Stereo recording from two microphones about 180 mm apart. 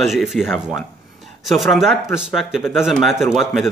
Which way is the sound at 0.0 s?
Centre (ahead or behind).